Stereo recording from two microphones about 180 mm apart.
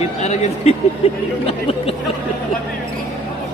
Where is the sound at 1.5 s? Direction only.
30° left (ahead or behind).